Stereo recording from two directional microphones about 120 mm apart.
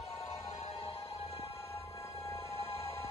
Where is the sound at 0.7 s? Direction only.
50° left (ahead or behind).